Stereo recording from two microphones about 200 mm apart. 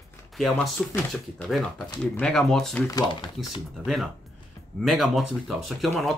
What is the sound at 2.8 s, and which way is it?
Speech, 20° left (ahead or behind).